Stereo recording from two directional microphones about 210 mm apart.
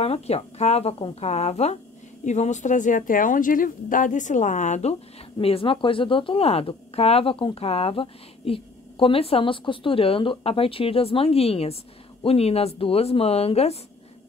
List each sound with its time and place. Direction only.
0.0 s speech: 30° left (ahead or behind)